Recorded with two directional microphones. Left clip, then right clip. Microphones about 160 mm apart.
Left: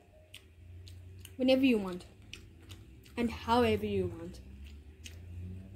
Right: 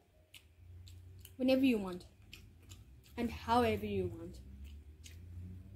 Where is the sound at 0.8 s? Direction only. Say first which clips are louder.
Left 6 dB; centre (ahead or behind).